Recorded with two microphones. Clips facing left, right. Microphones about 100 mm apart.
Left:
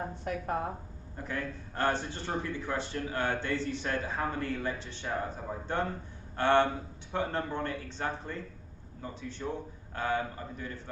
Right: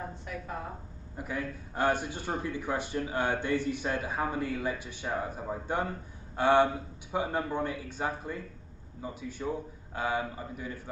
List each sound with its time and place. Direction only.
0.2 s a woman's voice: 55° left (ahead or behind)
1.1 s a man's voice: 10° right (ahead or behind)